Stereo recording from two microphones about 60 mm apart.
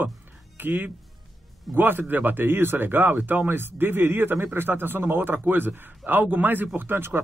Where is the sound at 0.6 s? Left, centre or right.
Right.